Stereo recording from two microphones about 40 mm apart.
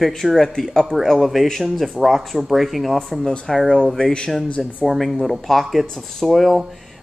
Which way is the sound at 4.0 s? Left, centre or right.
Left.